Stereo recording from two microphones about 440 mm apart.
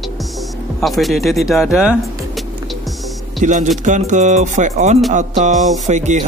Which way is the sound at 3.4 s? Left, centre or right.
Centre.